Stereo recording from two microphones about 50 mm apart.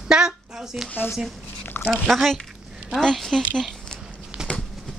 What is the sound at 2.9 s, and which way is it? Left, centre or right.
Speech, centre.